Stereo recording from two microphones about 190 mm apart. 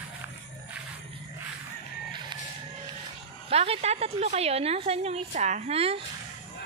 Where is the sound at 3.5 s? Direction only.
35° right (ahead or behind).